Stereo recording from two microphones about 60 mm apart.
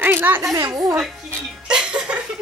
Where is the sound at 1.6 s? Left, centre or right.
Centre.